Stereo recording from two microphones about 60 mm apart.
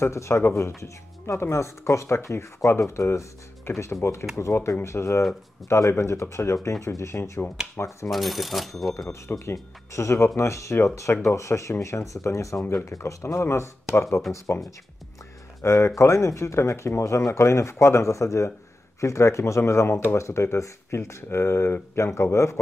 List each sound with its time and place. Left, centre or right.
0.0 s speech: left
8.1 s speech: centre
9.4 s speech: left
15.6 s speech: left